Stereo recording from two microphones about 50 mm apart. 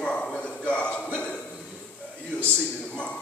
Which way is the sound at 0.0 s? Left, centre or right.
Left.